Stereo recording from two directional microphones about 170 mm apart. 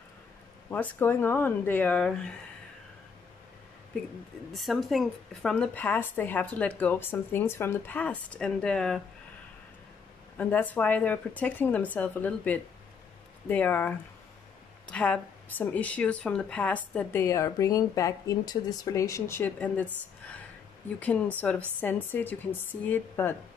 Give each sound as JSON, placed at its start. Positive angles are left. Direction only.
{"t": 0.7, "sound": "speech", "side_deg": 10}
{"t": 4.5, "sound": "speech", "side_deg": 0}
{"t": 10.3, "sound": "speech", "side_deg": 10}
{"t": 21.4, "sound": "speech", "side_deg": 10}